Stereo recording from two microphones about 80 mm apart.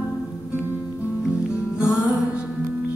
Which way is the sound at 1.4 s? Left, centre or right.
Centre.